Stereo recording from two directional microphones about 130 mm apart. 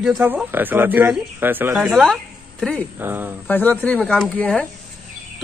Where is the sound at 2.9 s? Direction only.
15° right (ahead or behind).